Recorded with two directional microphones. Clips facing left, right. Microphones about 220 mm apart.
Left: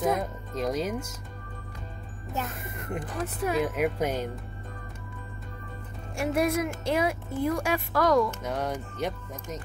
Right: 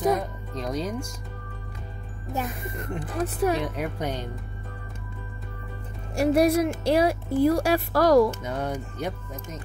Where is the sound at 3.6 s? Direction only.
10° left (ahead or behind).